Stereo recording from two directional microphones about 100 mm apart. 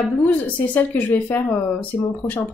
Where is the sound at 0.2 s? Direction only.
15° left (ahead or behind).